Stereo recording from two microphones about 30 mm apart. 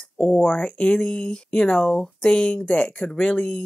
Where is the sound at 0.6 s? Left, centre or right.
Left.